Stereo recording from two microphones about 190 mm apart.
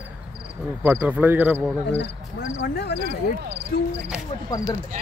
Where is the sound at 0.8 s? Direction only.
10° right (ahead or behind).